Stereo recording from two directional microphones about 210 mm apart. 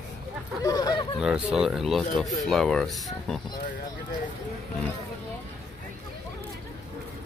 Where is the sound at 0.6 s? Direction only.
20° left (ahead or behind).